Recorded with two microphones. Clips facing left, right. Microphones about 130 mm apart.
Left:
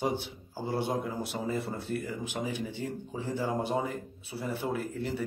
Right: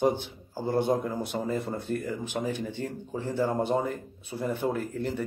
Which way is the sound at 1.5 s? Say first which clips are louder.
Even; 45° right (ahead or behind).